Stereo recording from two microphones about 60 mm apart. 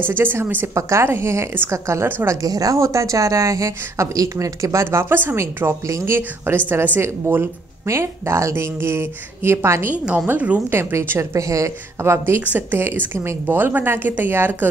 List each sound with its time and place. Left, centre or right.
0.2 s a woman's voice: right
0.7 s speech: right
1.0 s a woman's voice: right
1.7 s speech: right
2.4 s speech: right
5.1 s a woman's voice: right
5.9 s speech: right
6.1 s a woman's voice: right
7.8 s speech: right
9.9 s a woman's voice: right
10.7 s speech: right
11.1 s speech: right
12.0 s a woman's voice: right